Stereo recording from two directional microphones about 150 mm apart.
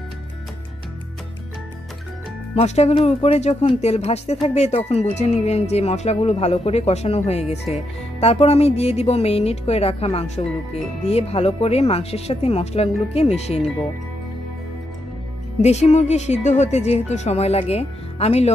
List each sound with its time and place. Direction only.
2.5 s speech: 45° left (ahead or behind)
15.6 s speech: 45° left (ahead or behind)